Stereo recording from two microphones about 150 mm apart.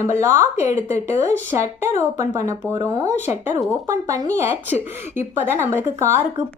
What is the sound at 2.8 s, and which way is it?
A woman's voice, 20° right (ahead or behind).